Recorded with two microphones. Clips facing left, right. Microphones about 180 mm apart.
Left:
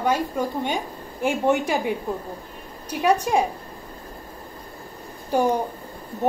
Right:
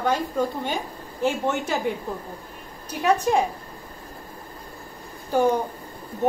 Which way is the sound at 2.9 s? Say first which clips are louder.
Left 1 dB; 10° left (ahead or behind).